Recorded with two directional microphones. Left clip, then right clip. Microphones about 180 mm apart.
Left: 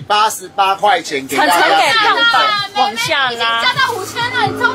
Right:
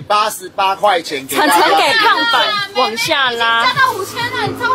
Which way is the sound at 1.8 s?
30° right (ahead or behind).